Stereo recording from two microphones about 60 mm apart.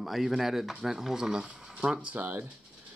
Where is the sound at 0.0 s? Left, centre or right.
Centre; by 2.2 s right.